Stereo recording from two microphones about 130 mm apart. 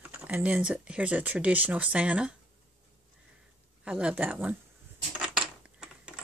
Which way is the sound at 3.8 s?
10° right (ahead or behind).